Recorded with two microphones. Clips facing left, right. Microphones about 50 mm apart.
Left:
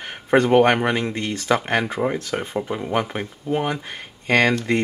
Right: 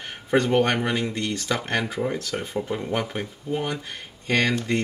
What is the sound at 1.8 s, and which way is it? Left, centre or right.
Speech, left.